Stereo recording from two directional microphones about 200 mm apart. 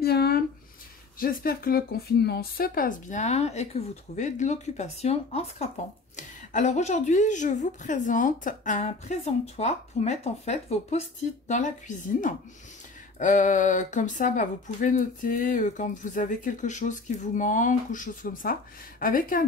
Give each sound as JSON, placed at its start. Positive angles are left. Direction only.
{"t": 0.0, "sound": "a sound", "side_deg": 50}
{"t": 1.2, "sound": "a woman's voice", "side_deg": 45}
{"t": 13.2, "sound": "speech", "side_deg": 40}